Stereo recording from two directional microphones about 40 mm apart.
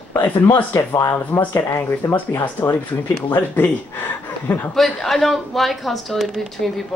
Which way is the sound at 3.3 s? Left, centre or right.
Left.